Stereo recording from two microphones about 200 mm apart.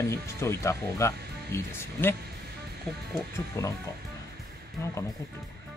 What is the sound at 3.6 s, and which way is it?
Speech, 15° left (ahead or behind).